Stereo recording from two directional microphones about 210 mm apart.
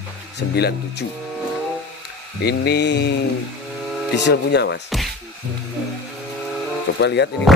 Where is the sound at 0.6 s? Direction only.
50° left (ahead or behind).